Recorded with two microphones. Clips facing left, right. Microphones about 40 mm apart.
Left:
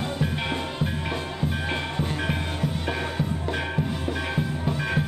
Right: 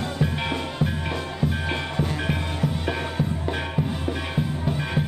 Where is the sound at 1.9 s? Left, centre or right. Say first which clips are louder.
Right 1 dB; centre.